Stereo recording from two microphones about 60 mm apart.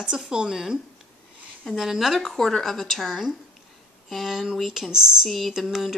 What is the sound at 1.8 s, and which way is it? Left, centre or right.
A woman's voice, centre.